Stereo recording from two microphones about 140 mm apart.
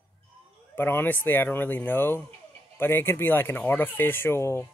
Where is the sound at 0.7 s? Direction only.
15° left (ahead or behind).